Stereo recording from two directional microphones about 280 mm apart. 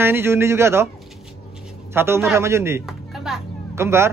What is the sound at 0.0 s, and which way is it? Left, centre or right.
Speech, centre.